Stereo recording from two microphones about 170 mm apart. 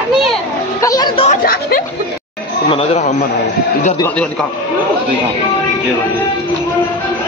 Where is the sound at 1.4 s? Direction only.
60° left (ahead or behind).